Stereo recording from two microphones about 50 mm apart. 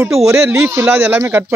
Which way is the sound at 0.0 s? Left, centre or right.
Right.